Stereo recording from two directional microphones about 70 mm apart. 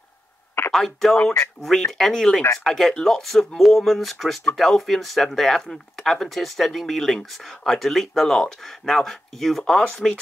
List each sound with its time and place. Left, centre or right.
0.7 s speech: centre
1.1 s speech: left
1.4 s speech: centre